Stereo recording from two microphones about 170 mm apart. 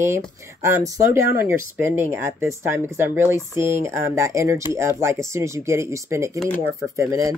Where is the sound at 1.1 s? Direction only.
15° right (ahead or behind).